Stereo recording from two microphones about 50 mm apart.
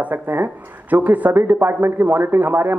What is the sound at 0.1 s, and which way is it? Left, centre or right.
A man's voice, right.